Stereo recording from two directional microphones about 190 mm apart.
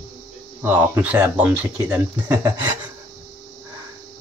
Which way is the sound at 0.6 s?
10° right (ahead or behind).